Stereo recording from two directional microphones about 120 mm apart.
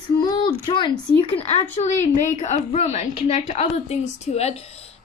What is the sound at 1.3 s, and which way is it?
A woman's voice, 65° left (ahead or behind).